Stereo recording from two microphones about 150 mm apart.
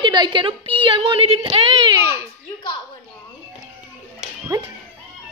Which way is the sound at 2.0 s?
20° right (ahead or behind).